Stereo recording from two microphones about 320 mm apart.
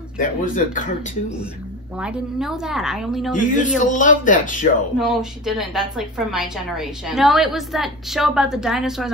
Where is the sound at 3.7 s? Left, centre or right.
Left.